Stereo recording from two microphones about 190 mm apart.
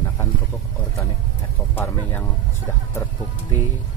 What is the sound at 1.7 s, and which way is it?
Speech, 10° left (ahead or behind).